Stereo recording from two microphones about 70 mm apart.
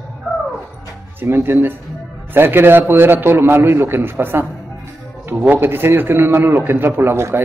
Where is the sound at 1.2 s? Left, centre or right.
Right.